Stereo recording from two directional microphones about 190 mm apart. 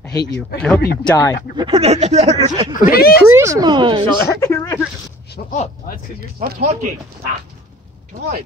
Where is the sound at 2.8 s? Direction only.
50° left (ahead or behind).